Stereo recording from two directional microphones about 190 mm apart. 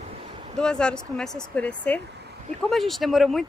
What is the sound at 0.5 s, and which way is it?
Speech, 5° left (ahead or behind).